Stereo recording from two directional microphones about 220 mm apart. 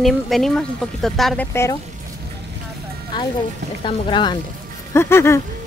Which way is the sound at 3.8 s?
20° left (ahead or behind).